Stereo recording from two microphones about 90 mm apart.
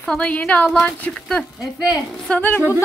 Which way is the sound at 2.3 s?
20° left (ahead or behind).